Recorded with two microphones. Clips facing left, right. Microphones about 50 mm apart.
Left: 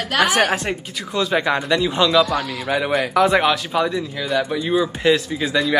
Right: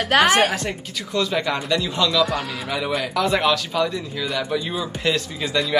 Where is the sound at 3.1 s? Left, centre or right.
Left.